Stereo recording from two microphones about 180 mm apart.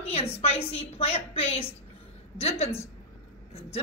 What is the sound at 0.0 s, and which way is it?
A woman's voice, 35° left (ahead or behind).